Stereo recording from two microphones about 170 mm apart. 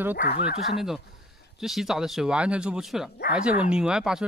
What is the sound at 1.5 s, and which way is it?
Speech, centre (ahead or behind).